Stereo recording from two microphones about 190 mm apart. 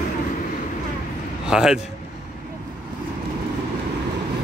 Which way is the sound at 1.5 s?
5° right (ahead or behind).